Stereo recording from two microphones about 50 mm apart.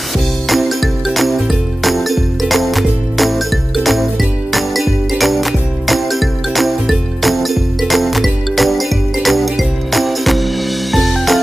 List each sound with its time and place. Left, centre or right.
0.5 s music: centre